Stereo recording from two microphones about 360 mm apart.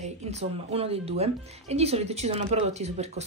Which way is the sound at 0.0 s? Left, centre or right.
Centre.